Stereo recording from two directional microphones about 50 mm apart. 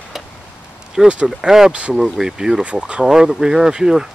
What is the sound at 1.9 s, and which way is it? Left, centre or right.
Speech, centre.